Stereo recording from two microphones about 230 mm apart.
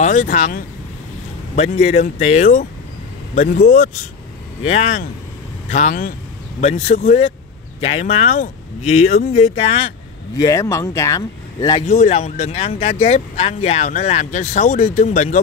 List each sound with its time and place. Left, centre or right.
0.0 s speech: left; by 11.8 s centre
11.8 s speech: left